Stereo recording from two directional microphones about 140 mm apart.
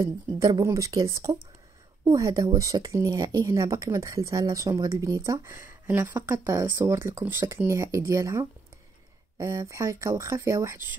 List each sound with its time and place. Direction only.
0.0 s speech: 25° right (ahead or behind)